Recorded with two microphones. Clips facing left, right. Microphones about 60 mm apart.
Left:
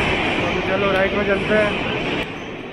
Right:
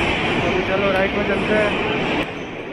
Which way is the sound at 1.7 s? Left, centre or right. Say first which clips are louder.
Right 2 dB; right.